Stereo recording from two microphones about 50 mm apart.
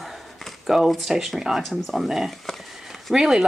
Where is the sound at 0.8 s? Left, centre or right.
Centre.